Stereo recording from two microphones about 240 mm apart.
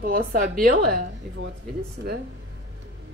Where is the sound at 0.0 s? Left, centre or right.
Right.